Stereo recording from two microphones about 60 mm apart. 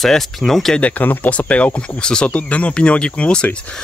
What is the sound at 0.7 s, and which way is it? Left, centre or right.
Speech, left.